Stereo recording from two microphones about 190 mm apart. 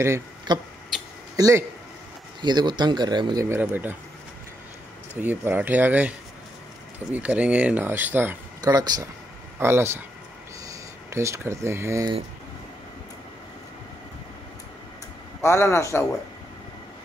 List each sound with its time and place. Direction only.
0.0 s a man's voice: 15° right (ahead or behind)
3.4 s speech: 10° right (ahead or behind)
5.1 s speech: 10° right (ahead or behind)
15.4 s a man's voice: 15° left (ahead or behind)